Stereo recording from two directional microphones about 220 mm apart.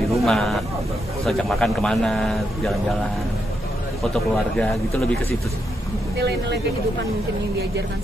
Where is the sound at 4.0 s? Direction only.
Centre (ahead or behind).